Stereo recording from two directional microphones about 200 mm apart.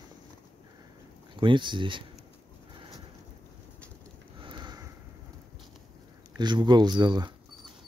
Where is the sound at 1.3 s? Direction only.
25° right (ahead or behind).